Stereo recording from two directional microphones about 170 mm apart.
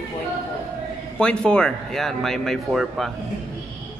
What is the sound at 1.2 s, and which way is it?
A man's voice, 5° left (ahead or behind).